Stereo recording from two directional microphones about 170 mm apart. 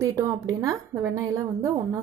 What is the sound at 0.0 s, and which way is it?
A woman's voice, 20° right (ahead or behind).